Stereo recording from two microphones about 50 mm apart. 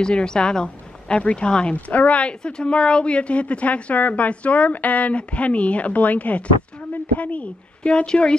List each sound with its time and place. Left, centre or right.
0.0 s speech: centre